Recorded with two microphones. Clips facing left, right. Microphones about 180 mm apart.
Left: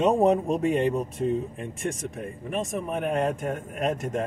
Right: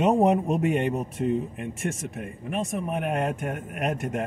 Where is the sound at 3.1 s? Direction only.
35° left (ahead or behind).